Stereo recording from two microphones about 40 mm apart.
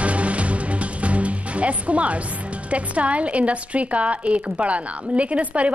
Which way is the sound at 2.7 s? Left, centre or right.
Right.